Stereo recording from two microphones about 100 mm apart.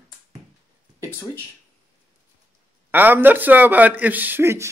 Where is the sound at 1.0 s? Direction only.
30° left (ahead or behind).